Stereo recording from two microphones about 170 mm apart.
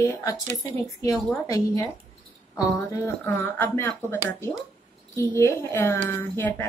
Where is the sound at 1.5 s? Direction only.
20° left (ahead or behind).